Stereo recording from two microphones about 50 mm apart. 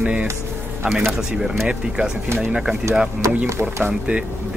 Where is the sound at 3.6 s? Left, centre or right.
Right.